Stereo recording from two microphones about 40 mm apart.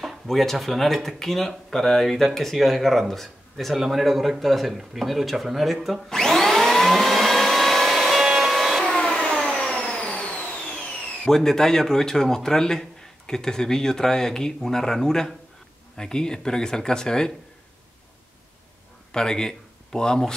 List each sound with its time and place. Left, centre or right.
0.0 s speech: centre
6.0 s vacuum cleaner: centre
8.8 s vacuum cleaner: centre
10.1 s vehicle: left
10.8 s speech: centre
19.1 s speech: centre